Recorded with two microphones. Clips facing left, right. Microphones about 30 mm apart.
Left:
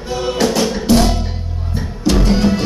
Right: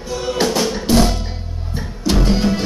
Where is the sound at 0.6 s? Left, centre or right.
Centre.